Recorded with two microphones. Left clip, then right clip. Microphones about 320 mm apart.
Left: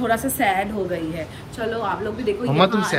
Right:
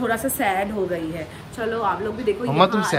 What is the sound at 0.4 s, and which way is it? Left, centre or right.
A woman's voice, centre.